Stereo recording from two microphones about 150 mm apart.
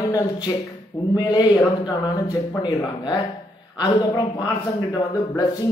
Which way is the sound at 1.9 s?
25° left (ahead or behind).